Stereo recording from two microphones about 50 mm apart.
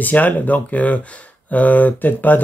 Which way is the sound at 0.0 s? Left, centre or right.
Left.